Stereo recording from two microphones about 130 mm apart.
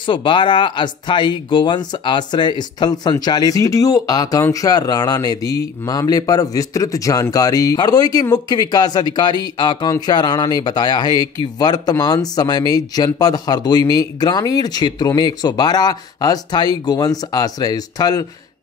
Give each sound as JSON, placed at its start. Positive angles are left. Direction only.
{"t": 0.0, "sound": "speech", "side_deg": 40}